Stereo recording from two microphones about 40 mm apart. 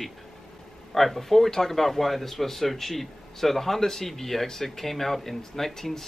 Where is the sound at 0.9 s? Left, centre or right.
Centre.